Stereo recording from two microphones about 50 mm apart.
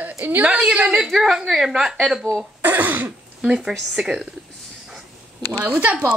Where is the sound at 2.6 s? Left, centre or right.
Right.